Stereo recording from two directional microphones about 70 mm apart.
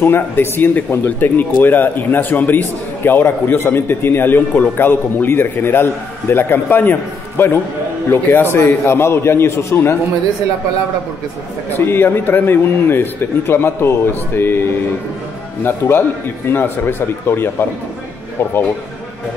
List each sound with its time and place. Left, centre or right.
0.0 s speech: left
11.8 s speech: left
15.6 s speech: left